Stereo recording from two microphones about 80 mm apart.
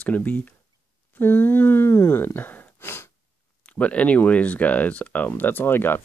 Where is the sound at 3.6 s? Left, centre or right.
Centre.